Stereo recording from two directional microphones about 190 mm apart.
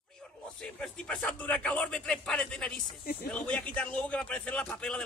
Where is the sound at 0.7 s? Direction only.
5° left (ahead or behind).